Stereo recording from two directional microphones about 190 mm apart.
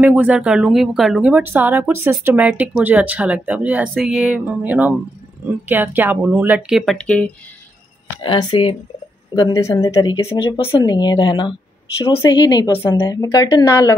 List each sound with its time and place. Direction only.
0.0 s speech: 10° right (ahead or behind)
8.2 s speech: 25° left (ahead or behind)